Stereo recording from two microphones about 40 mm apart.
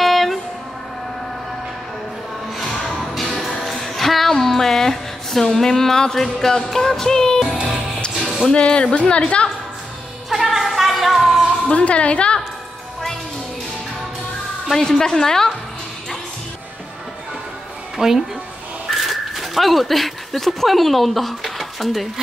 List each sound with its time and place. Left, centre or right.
0.0 s vehicle: centre
3.6 s music: centre
8.5 s a woman's voice: left
10.3 s music: centre
11.7 s a woman's voice: left
14.7 s speech: centre
17.9 s a woman's voice: centre